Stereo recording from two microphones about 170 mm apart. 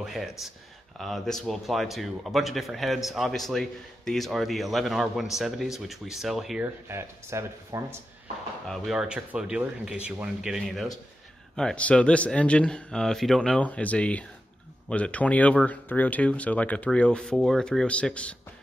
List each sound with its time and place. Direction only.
0.0 s speech: centre (ahead or behind)
6.6 s speech: 15° right (ahead or behind)
8.6 s speech: centre (ahead or behind)